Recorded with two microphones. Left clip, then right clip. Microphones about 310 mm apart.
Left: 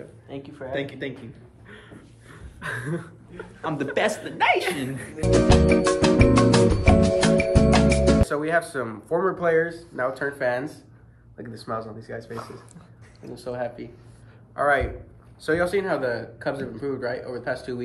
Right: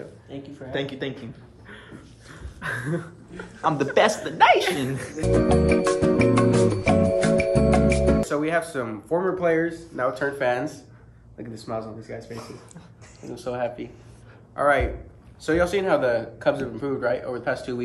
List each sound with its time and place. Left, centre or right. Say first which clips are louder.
0.3 s speech: left 2 dB; centre
0.7 s speech: right 1 dB; centre
1.7 s a sound: right 2 dB; centre
2.6 s speech: right 2 dB; centre
5.2 s music: left 1 dB; centre
11.3 s a man's voice: even; centre
13.3 s a man's voice: right 2 dB; centre